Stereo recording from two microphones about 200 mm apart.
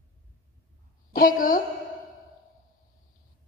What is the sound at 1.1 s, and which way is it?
Speech, 45° left (ahead or behind).